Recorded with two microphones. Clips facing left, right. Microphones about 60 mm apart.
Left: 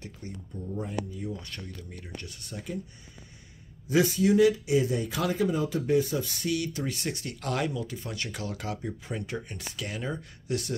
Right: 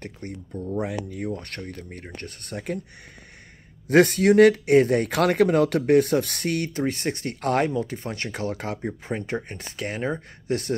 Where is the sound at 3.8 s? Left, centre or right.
Right.